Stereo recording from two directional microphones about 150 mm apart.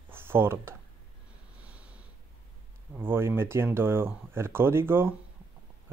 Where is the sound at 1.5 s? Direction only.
10° right (ahead or behind).